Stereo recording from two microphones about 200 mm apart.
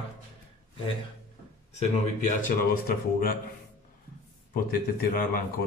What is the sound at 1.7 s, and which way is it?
A man's voice, 35° left (ahead or behind).